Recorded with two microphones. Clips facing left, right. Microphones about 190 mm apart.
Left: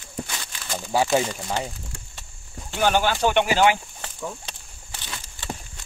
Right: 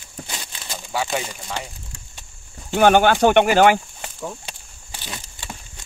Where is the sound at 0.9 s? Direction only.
30° left (ahead or behind).